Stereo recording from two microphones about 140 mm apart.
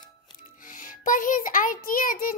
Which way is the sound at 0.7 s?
75° left (ahead or behind).